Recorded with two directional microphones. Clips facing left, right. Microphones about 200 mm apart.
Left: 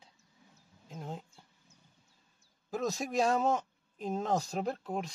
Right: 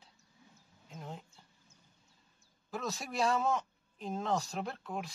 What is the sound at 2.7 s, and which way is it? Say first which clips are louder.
Speech: left 6 dB; 40° left (ahead or behind).